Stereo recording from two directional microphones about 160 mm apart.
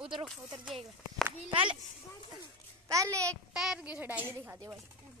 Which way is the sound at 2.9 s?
20° right (ahead or behind).